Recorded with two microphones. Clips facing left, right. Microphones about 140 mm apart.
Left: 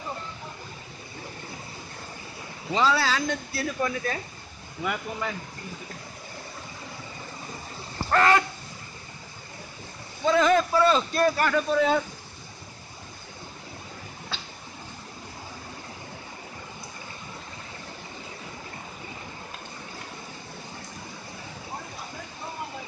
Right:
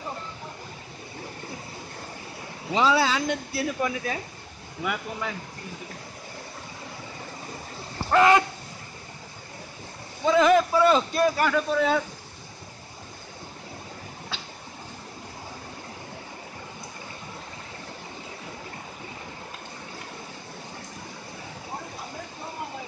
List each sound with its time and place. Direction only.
2.7 s speech: 15° right (ahead or behind)
8.1 s speech: 15° right (ahead or behind)
10.2 s speech: 10° right (ahead or behind)